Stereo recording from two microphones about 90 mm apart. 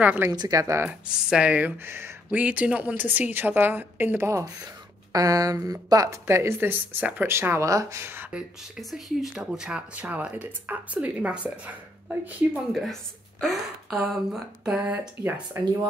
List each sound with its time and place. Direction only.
0.0 s a woman's voice: 20° right (ahead or behind)
0.3 s speech: 45° right (ahead or behind)
0.8 s a woman's voice: 10° right (ahead or behind); by 4.5 s 30° right (ahead or behind)
5.1 s speech: 40° right (ahead or behind); by 8.3 s 25° right (ahead or behind)
8.3 s speech: 5° right (ahead or behind)
13.4 s speech: centre (ahead or behind)
14.7 s speech: 15° right (ahead or behind)